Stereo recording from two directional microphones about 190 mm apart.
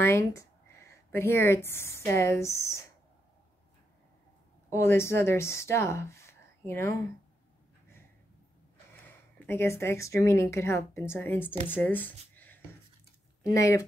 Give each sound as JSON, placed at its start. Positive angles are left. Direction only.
{"t": 0.0, "sound": "speech", "side_deg": 15}
{"t": 4.6, "sound": "speech", "side_deg": 15}
{"t": 9.0, "sound": "speech", "side_deg": 10}
{"t": 13.6, "sound": "speech", "side_deg": 15}